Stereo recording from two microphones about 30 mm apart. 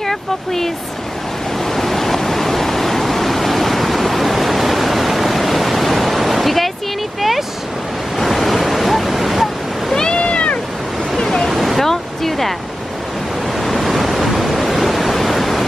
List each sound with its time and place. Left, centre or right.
0.0 s speech: centre
1.7 s waves: centre
7.2 s a sound: centre
8.2 s waves: centre
9.9 s cat: left
10.2 s cat: left
11.4 s waves: centre
13.6 s waves: centre